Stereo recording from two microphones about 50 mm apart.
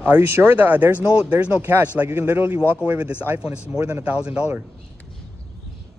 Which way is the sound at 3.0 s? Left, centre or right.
Right.